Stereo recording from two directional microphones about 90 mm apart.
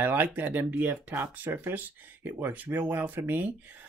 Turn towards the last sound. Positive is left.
turn(degrees=-20)  # may be behind; listen again after turning